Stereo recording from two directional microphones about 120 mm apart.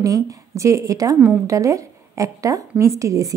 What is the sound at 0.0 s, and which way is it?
A woman's voice, 25° right (ahead or behind).